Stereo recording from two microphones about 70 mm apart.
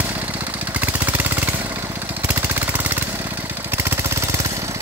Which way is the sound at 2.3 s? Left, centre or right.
Right.